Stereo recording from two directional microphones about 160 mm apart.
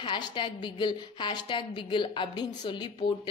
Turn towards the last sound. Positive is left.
turn(degrees=30)  # may be behind; listen again after turning